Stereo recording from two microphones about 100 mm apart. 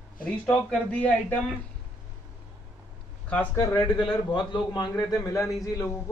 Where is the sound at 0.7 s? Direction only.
15° left (ahead or behind).